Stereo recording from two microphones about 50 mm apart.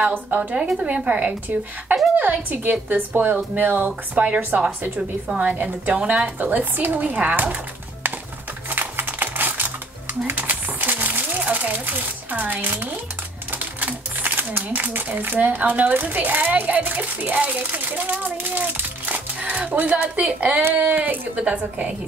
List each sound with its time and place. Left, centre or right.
0.1 s a child's voice: right
0.6 s a woman's voice: centre
0.8 s a woman's voice: right
2.1 s a child's voice: right
8.6 s a sound: right
13.5 s typewriter: right
14.2 s a sound: right
15.3 s a child's voice: right
20.7 s a child's voice: right